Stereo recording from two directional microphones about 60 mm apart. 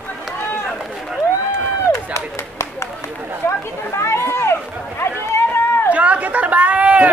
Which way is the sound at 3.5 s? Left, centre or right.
Left.